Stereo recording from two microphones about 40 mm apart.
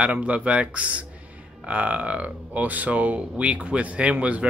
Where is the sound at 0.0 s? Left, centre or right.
Right.